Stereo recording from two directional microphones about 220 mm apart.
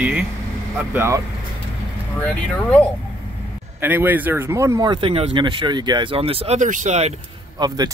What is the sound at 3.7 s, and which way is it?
Speech, 10° right (ahead or behind).